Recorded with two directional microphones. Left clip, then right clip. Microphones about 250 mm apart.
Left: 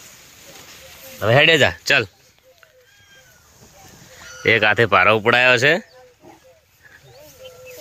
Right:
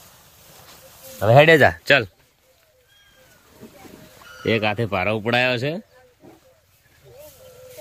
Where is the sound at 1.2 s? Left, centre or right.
Right.